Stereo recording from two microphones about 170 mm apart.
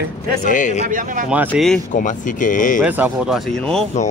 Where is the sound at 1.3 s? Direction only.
10° right (ahead or behind).